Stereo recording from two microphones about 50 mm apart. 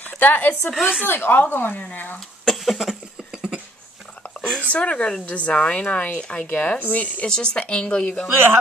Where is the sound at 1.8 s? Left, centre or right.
Left.